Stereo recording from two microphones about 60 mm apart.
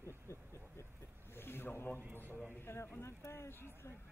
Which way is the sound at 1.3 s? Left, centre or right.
Left.